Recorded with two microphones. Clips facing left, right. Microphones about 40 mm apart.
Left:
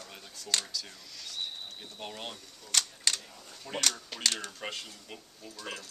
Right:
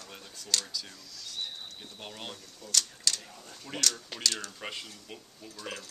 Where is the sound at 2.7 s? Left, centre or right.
Left.